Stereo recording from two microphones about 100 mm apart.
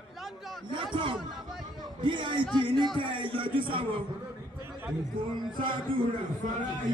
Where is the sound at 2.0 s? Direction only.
55° right (ahead or behind).